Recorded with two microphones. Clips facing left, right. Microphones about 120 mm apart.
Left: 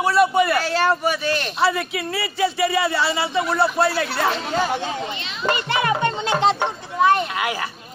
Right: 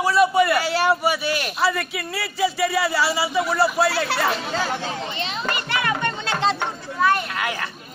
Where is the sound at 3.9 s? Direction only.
90° right.